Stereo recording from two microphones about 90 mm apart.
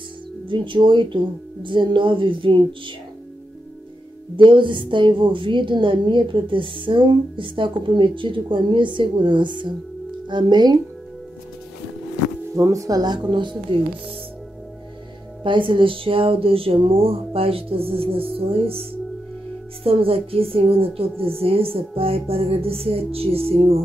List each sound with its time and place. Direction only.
0.5 s a woman's voice: 65° right (ahead or behind)
4.4 s a woman's voice: 65° right (ahead or behind)
12.5 s speech: 35° right (ahead or behind)
13.3 s a woman's voice: 60° right (ahead or behind)
15.4 s speech: 70° right (ahead or behind); by 18.2 s 90° right
19.8 s speech: 90° right